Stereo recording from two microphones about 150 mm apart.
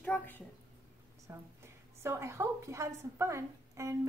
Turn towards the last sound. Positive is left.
turn(degrees=-20)  # may be behind; listen again after turning